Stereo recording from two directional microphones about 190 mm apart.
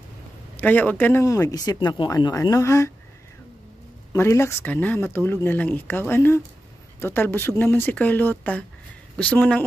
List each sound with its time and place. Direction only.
0.6 s speech: 10° left (ahead or behind)
4.1 s speech: 15° left (ahead or behind)